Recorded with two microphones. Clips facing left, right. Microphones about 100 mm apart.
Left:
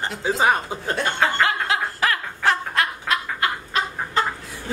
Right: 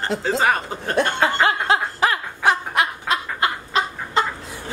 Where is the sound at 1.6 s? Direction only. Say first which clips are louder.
Right 3 dB; 20° right (ahead or behind).